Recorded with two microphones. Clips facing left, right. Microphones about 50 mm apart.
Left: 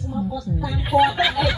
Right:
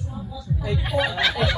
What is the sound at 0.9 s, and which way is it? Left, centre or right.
Speech, centre.